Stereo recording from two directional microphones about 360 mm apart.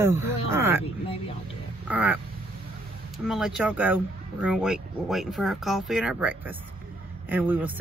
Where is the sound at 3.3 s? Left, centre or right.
Centre.